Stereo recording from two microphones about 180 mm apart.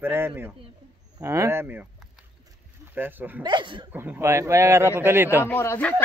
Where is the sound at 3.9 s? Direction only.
10° right (ahead or behind).